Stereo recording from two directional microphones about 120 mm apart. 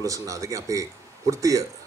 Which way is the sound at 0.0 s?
25° right (ahead or behind).